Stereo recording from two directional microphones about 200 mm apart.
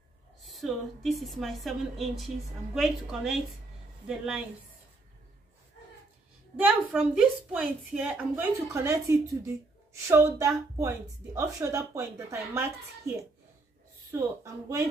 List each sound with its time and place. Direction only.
0.5 s a woman's voice: centre (ahead or behind)
6.5 s a woman's voice: 5° right (ahead or behind)
14.1 s a woman's voice: 15° right (ahead or behind)